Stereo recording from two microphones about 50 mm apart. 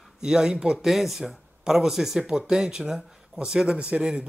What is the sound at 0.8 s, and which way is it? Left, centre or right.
Speech, centre.